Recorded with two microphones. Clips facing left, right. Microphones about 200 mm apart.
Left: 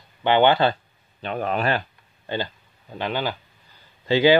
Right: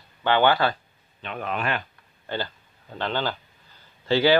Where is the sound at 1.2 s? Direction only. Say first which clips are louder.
Left 5 dB; 40° left (ahead or behind).